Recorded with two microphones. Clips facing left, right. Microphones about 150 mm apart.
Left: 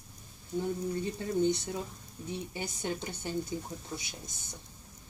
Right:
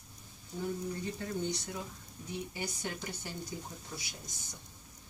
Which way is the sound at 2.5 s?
25° left (ahead or behind).